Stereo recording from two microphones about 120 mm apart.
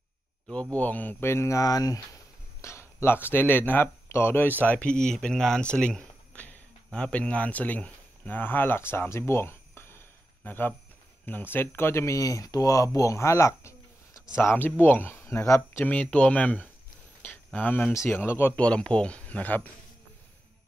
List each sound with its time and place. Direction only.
0.5 s speech: 10° left (ahead or behind)
15.8 s speech: 10° left (ahead or behind)
17.2 s a sound: 15° left (ahead or behind)
17.9 s speech: 20° left (ahead or behind)
18.4 s speech: 10° left (ahead or behind)